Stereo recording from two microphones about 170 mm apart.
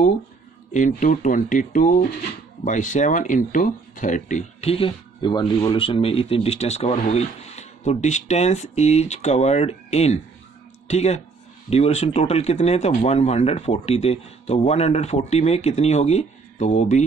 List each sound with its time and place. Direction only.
0.7 s speech: 45° left (ahead or behind)